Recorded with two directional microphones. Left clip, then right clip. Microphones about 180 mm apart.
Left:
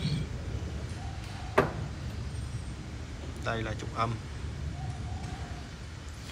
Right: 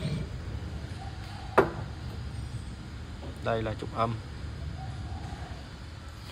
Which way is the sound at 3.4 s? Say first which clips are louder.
Right 4 dB; 25° right (ahead or behind).